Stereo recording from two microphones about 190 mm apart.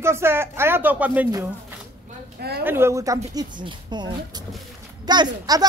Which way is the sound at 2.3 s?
60° right (ahead or behind).